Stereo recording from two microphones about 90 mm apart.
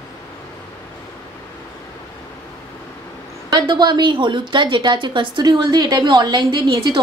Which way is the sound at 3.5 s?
55° right (ahead or behind).